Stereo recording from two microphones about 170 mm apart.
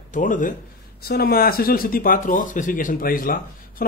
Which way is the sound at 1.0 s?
65° left (ahead or behind).